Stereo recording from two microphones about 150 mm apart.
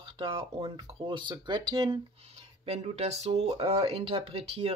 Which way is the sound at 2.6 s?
45° right (ahead or behind).